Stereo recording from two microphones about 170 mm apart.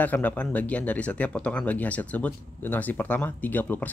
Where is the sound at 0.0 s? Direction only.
10° left (ahead or behind).